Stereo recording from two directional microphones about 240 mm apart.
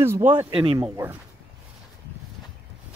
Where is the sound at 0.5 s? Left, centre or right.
Right.